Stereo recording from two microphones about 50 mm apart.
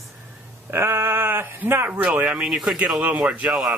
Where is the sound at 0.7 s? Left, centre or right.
Right.